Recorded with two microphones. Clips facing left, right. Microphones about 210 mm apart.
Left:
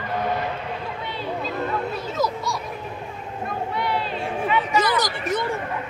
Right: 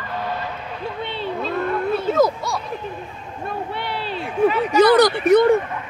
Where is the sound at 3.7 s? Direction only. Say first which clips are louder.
Left 1 dB; 30° right (ahead or behind).